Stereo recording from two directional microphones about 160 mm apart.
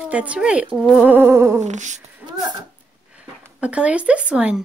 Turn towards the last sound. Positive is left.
turn(degrees=-5)  # may be behind; listen again after turning